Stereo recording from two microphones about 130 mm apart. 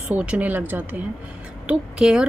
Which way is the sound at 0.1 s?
10° right (ahead or behind).